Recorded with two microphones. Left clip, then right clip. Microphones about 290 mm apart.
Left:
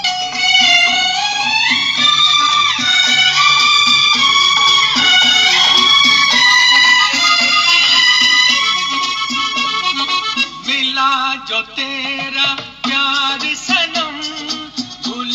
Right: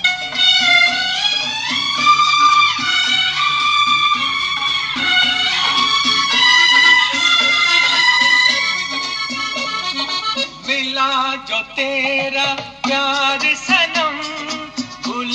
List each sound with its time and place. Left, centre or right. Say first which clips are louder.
0.6 s music: left 2 dB; centre
8.5 s music: left 4 dB; left
12.4 s music: left 2 dB; centre